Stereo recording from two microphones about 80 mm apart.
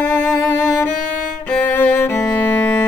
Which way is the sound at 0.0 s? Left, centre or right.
Left.